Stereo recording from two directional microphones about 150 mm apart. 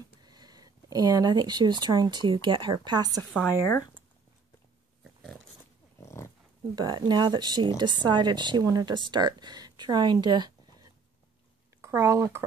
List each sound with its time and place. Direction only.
0.2 s speech: 25° right (ahead or behind)
3.3 s speech: 15° left (ahead or behind)
5.0 s pig: centre (ahead or behind)
5.9 s dog: 20° left (ahead or behind)
6.7 s speech: 30° right (ahead or behind)
10.2 s a sound: 30° right (ahead or behind)
11.8 s speech: 20° right (ahead or behind)